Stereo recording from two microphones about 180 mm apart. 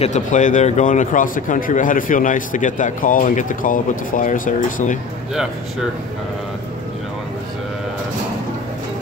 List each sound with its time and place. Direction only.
0.0 s speech: 40° left (ahead or behind)